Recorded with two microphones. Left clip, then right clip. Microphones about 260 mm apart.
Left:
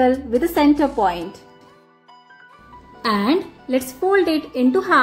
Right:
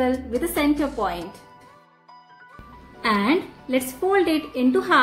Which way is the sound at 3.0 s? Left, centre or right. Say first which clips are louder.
Left 2 dB; centre.